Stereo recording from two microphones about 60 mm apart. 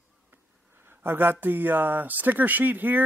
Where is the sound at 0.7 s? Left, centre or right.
Right.